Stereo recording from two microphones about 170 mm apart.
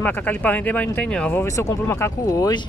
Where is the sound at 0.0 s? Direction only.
10° left (ahead or behind).